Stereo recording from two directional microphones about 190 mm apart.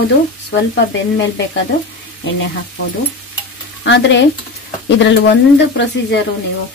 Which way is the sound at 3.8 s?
70° left (ahead or behind).